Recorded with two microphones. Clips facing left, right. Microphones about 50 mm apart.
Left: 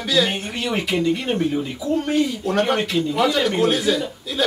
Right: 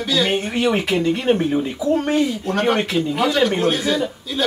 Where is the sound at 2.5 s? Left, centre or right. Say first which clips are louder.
Left 1 dB; centre.